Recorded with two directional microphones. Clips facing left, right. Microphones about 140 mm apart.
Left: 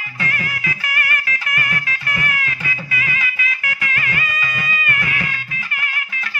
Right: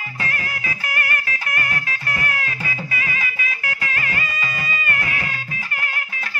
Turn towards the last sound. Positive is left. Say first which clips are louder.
# even
turn(degrees=-35)  # may be behind; listen again after turning